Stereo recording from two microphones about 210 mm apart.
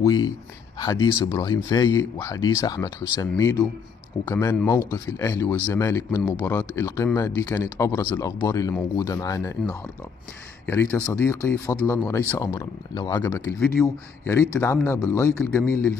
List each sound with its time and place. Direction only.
0.0 s speech: 15° left (ahead or behind)